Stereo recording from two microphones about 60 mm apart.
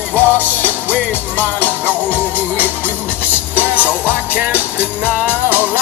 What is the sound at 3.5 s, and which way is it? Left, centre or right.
Music, right.